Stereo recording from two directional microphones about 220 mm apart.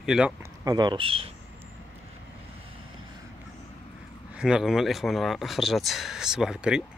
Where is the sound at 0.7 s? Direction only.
20° right (ahead or behind).